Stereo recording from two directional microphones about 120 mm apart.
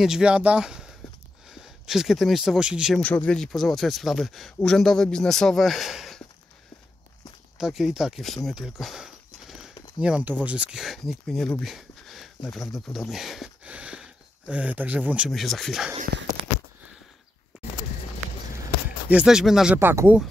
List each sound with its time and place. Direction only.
0.0 s speech: 5° right (ahead or behind)
3.0 s speech: 10° left (ahead or behind)
7.5 s speech: 5° right (ahead or behind)
8.5 s a sound: 5° right (ahead or behind)
9.9 s speech: 10° right (ahead or behind)
18.9 s speech: 10° right (ahead or behind)
19.8 s speech: 20° right (ahead or behind)